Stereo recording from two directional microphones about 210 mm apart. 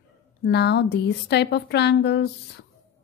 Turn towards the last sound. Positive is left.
turn(degrees=55)  # may be behind; listen again after turning